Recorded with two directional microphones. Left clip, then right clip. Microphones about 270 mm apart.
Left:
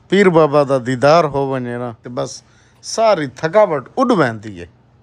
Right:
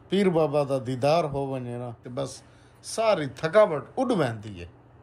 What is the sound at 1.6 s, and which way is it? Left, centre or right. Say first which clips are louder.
Speech: left 12 dB; left.